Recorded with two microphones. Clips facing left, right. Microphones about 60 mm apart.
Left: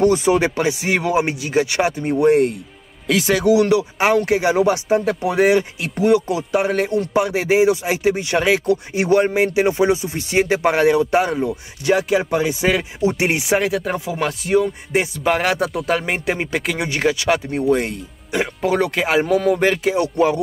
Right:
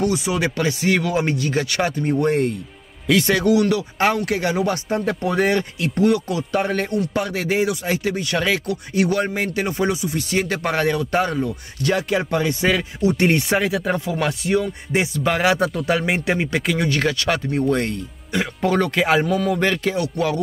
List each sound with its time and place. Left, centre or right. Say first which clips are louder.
0.0 s speech: left 6 dB; left
0.6 s speech: left 1 dB; centre
3.4 s speech: left 3 dB; left
6.0 s speech: left 4 dB; left
6.5 s speech: left 3 dB; centre
11.9 s speech: left 4 dB; centre
16.7 s speech: left 2 dB; centre
19.2 s speech: left 4 dB; left
19.6 s speech: left 3 dB; centre
20.0 s speech: left 5 dB; left